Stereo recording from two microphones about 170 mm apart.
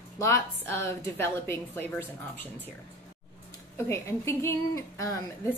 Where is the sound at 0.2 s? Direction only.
15° left (ahead or behind).